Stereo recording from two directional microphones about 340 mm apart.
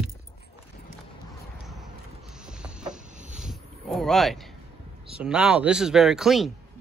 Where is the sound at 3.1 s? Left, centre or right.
Right.